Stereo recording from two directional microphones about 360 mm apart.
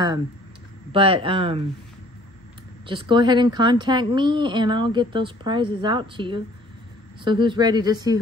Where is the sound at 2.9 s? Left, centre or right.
Centre.